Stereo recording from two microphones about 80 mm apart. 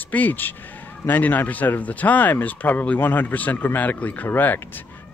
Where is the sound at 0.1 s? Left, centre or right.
Left.